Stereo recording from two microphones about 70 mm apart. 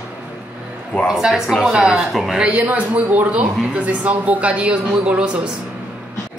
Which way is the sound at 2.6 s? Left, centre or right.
Right.